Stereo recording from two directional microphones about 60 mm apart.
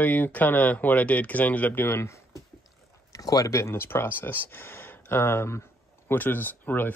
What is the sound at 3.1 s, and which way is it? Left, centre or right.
Speech, left.